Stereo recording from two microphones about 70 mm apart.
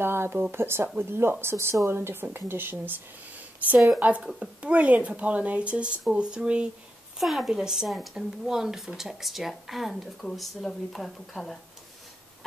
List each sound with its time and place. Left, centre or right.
0.0 s speech: right; by 6.7 s centre
7.2 s speech: centre